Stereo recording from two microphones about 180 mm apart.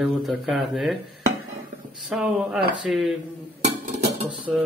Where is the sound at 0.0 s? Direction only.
5° right (ahead or behind).